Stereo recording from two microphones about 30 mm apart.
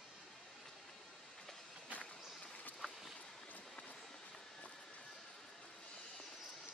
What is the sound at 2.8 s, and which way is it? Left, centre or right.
Vehicle, centre.